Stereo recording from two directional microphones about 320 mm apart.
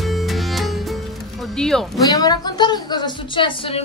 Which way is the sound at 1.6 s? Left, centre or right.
Centre.